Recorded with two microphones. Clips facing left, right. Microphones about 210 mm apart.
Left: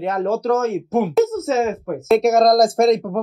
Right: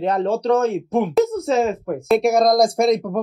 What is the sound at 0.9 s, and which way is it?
Speech, centre (ahead or behind).